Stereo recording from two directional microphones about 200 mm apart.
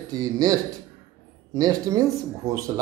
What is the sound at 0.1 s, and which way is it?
Speech, 15° right (ahead or behind).